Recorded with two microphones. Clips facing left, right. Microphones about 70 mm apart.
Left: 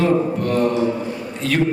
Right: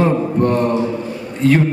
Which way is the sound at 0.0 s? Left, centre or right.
Right.